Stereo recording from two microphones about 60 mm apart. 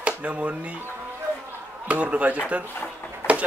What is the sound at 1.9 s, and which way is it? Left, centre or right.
Speech, right.